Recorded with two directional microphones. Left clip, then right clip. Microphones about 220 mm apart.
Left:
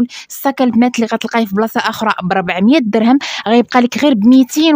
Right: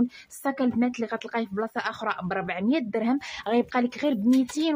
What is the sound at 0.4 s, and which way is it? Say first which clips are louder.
Speech: left 13 dB; 45° left (ahead or behind).